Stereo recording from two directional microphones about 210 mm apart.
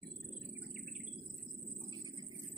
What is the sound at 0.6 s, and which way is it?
Bird, 5° right (ahead or behind).